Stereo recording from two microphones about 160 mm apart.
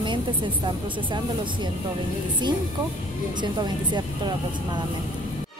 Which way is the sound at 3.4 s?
30° right (ahead or behind).